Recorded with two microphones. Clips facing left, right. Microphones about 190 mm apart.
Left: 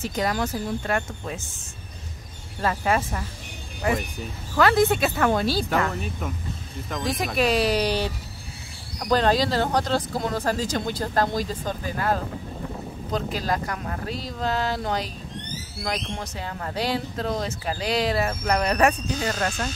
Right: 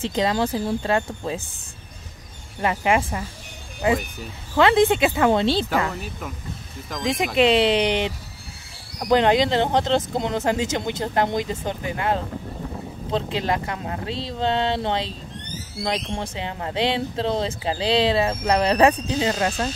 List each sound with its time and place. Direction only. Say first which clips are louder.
0.0 s speech: right 4 dB; 25° right (ahead or behind)
2.6 s speech: right 3 dB; 20° right (ahead or behind)
4.6 s speech: right 3 dB; 25° right (ahead or behind)
5.9 s speech: left 2 dB; centre (ahead or behind)
7.3 s speech: right 4 dB; 25° right (ahead or behind)
9.1 s speech: right 3 dB; 20° right (ahead or behind)